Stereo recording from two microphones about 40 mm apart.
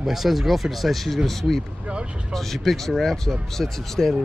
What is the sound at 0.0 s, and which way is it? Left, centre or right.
Speech, centre.